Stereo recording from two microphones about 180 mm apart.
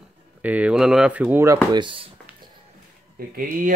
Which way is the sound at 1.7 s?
25° right (ahead or behind).